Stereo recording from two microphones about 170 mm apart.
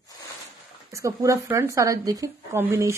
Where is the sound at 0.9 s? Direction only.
20° right (ahead or behind).